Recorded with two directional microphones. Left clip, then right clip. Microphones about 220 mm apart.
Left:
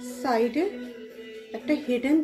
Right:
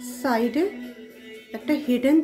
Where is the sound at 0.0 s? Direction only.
35° right (ahead or behind).